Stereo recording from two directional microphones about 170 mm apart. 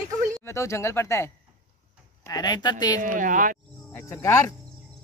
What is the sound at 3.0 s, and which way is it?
Speech, 50° right (ahead or behind).